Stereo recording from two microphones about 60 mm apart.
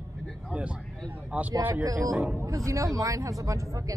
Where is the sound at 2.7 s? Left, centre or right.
Right.